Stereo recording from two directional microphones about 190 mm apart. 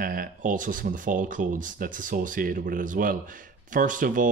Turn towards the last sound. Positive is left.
turn(degrees=-45)  # may be behind; listen again after turning